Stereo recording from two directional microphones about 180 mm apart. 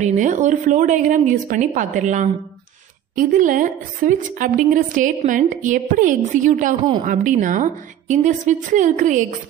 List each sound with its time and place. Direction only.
0.0 s a woman's voice: 45° right (ahead or behind)